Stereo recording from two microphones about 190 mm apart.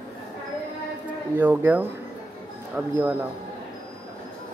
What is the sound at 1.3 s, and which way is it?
Speech, 10° right (ahead or behind).